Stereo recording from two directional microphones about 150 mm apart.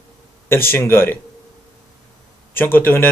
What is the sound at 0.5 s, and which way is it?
Speech, 15° left (ahead or behind).